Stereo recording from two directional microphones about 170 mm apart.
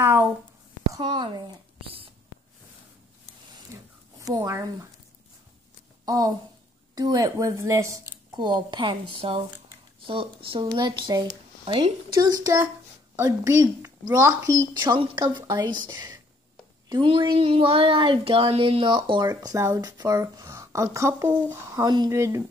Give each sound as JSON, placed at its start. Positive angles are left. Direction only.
{"t": 0.0, "sound": "a sound", "side_deg": -15}
{"t": 0.9, "sound": "a woman's voice", "side_deg": -25}
{"t": 3.7, "sound": "a sound", "side_deg": -15}
{"t": 4.2, "sound": "speech", "side_deg": -20}
{"t": 6.0, "sound": "a woman's voice", "side_deg": -20}
{"t": 15.0, "sound": "speech", "side_deg": -25}